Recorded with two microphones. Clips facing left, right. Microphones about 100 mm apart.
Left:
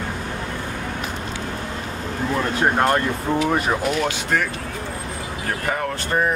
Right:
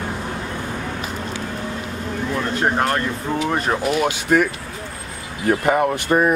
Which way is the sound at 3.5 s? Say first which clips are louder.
Right 1 dB; 5° right (ahead or behind).